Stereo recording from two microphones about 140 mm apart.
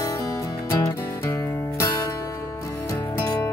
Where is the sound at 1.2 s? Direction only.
15° left (ahead or behind).